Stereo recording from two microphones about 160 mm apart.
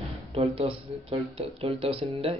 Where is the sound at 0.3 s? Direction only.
40° right (ahead or behind).